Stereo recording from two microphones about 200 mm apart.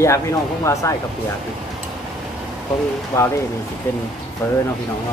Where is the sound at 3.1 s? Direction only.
15° left (ahead or behind).